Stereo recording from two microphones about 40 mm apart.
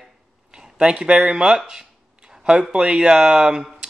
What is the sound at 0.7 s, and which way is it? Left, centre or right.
Speech, right.